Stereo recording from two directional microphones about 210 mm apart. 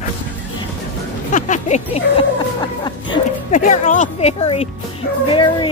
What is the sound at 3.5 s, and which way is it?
Speech, 35° left (ahead or behind).